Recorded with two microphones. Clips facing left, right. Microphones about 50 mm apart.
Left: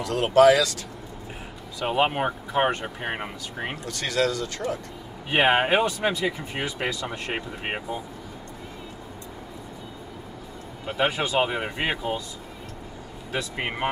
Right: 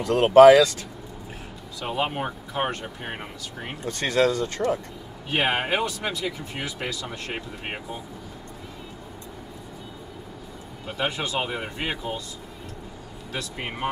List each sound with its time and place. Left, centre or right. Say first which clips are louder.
0.0 s speech: right 5 dB; right
1.8 s speech: left 4 dB; left
3.8 s speech: right 4 dB; right
5.3 s speech: left 4 dB; left
10.9 s speech: left 3 dB; centre
13.3 s speech: left 4 dB; left